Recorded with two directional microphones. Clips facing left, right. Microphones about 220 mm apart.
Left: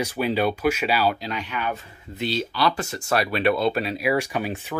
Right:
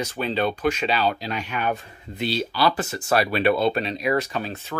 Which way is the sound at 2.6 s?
5° right (ahead or behind).